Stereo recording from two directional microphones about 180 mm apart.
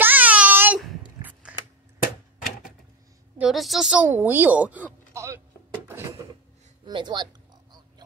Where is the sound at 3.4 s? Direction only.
Centre (ahead or behind).